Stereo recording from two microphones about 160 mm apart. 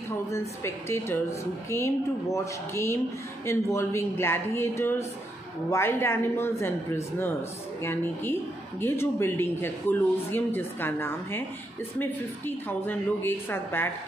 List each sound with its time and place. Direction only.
0.3 s a woman's voice: 15° left (ahead or behind)